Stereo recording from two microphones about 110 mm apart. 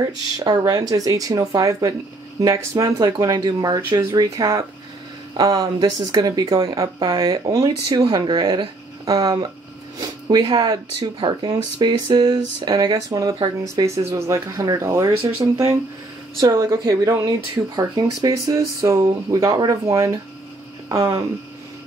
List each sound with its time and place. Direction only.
0.0 s speech: 35° right (ahead or behind)